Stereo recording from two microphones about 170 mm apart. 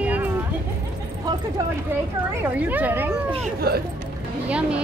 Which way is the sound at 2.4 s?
10° right (ahead or behind).